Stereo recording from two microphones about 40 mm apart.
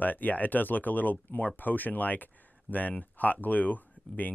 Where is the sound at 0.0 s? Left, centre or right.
Left.